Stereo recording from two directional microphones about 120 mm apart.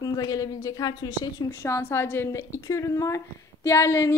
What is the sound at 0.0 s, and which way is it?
A woman's voice, 30° left (ahead or behind).